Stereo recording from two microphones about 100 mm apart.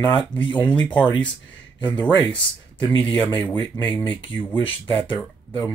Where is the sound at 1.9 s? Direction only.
50° left (ahead or behind).